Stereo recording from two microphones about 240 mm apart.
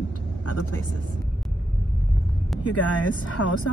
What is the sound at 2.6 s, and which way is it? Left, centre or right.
Speech, left.